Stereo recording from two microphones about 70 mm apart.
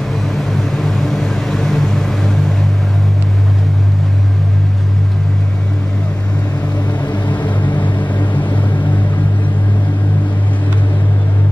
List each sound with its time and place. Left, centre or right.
0.1 s vehicle: centre
7.1 s music: left
7.4 s vehicle: left